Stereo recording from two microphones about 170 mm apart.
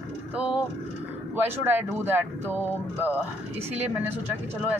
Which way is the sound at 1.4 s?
10° right (ahead or behind).